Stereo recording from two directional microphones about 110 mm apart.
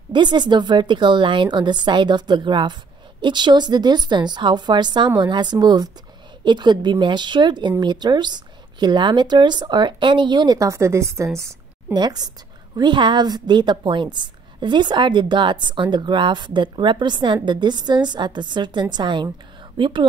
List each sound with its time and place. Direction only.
0.1 s a woman's voice: 45° right (ahead or behind); by 11.5 s 25° right (ahead or behind)
11.9 s a woman's voice: 40° right (ahead or behind)